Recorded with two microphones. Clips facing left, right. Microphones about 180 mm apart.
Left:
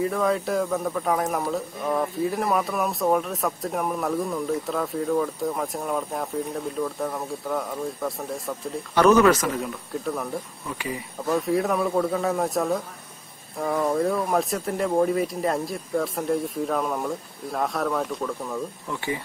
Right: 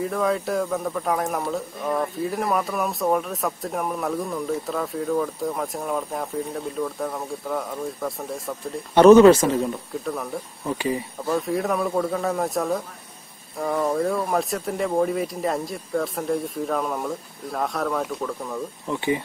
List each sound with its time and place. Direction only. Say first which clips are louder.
0.0 s speech: even; centre (ahead or behind)
8.9 s a man's voice: right 6 dB; 25° right (ahead or behind)
10.0 s speech: left 1 dB; centre (ahead or behind)
10.7 s speech: right 7 dB; 30° right (ahead or behind)
11.2 s speech: left 1 dB; centre (ahead or behind)
18.9 s a man's voice: right 8 dB; 20° right (ahead or behind)